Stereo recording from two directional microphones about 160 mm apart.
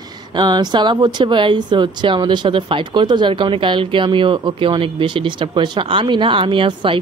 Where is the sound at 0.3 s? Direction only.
30° right (ahead or behind).